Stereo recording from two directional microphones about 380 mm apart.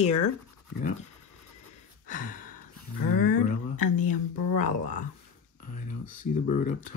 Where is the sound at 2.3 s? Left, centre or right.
Left.